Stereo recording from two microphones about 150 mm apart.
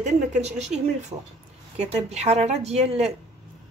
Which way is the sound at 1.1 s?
30° right (ahead or behind).